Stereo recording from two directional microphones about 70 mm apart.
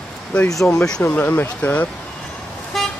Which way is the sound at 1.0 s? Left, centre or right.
Left.